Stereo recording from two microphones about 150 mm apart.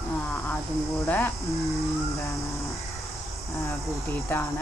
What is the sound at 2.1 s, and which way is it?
Speech, 20° left (ahead or behind).